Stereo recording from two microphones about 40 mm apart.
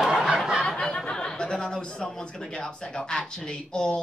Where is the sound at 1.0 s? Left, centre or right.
Centre.